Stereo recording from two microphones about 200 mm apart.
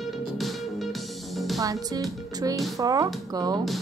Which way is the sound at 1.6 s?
15° right (ahead or behind).